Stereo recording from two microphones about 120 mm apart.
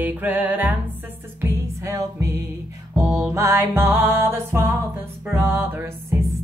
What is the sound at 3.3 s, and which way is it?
Music, 25° right (ahead or behind).